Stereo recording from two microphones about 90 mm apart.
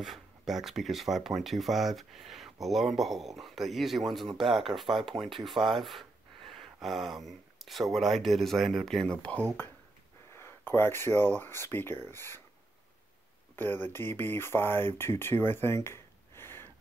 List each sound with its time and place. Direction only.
0.0 s speech: 5° right (ahead or behind); by 9.4 s 10° left (ahead or behind)
10.3 s speech: 25° left (ahead or behind)
13.6 s speech: 25° left (ahead or behind)